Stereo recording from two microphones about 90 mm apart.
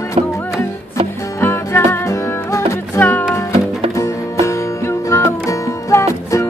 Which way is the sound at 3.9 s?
35° left (ahead or behind).